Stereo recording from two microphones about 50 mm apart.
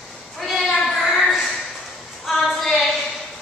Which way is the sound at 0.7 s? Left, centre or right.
Centre.